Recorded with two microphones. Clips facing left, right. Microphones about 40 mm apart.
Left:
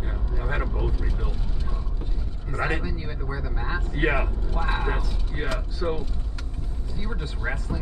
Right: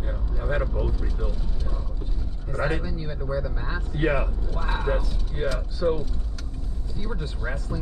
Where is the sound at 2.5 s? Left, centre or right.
Left.